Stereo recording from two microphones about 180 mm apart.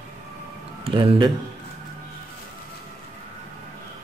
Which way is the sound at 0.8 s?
30° right (ahead or behind).